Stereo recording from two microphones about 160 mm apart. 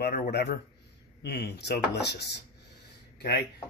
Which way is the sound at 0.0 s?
75° left (ahead or behind).